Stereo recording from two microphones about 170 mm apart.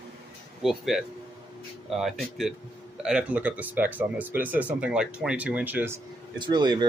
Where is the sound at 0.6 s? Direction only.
Centre (ahead or behind).